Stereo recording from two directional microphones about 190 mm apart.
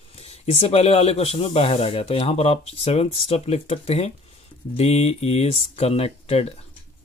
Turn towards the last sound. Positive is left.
turn(degrees=30)  # may be behind; listen again after turning